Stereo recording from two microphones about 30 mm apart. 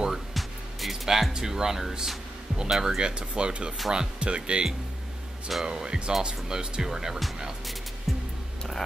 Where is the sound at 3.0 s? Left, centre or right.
Right.